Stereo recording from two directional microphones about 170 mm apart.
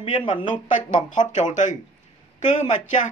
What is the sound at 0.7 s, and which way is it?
Speech, 50° left (ahead or behind).